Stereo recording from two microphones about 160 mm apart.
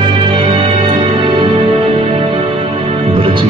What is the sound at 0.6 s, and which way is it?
Music, 35° right (ahead or behind).